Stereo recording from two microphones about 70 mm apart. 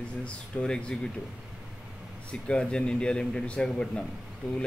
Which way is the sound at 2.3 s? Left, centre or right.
Centre.